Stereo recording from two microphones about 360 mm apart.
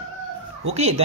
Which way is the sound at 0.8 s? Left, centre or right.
Centre.